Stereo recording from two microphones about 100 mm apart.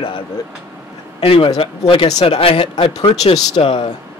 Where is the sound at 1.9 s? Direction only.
75° left (ahead or behind).